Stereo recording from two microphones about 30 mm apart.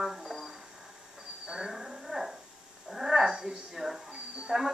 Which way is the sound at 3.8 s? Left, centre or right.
Centre.